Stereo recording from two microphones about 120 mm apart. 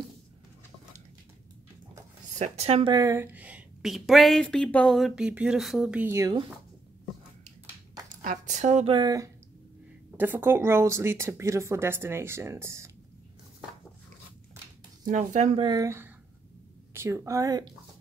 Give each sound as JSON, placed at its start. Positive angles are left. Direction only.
{"t": 2.3, "sound": "speech", "side_deg": -70}
{"t": 2.9, "sound": "speech", "side_deg": -30}
{"t": 3.2, "sound": "a sound", "side_deg": -15}
{"t": 3.9, "sound": "speech", "side_deg": 0}
{"t": 8.2, "sound": "a woman's voice", "side_deg": -85}
{"t": 8.8, "sound": "speech", "side_deg": -40}
{"t": 10.1, "sound": "speech", "side_deg": -15}
{"t": 15.0, "sound": "a woman's voice", "side_deg": -85}
{"t": 15.6, "sound": "speech", "side_deg": -30}